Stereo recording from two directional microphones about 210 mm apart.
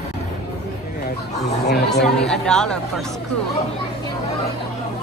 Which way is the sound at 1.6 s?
50° left (ahead or behind).